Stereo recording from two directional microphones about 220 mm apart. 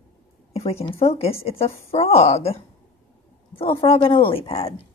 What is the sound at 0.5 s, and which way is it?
A woman's voice, 25° left (ahead or behind).